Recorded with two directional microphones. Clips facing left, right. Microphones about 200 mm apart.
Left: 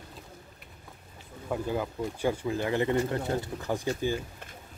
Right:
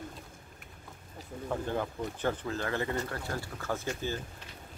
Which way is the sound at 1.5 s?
10° left (ahead or behind).